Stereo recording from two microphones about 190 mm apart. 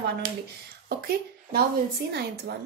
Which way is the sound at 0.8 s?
50° right (ahead or behind).